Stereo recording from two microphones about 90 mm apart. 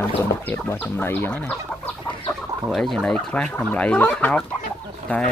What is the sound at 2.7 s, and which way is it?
Speech, 5° left (ahead or behind).